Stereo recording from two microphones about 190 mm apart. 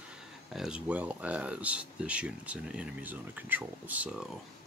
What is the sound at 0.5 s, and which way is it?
Speech, 5° right (ahead or behind).